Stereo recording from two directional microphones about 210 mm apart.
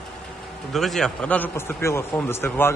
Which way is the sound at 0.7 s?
Centre (ahead or behind).